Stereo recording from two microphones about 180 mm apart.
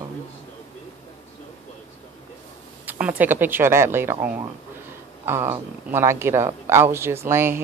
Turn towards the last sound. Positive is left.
turn(degrees=-15)  # may be behind; listen again after turning